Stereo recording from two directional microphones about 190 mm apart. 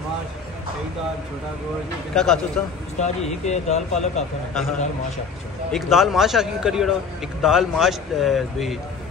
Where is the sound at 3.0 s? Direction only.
35° left (ahead or behind).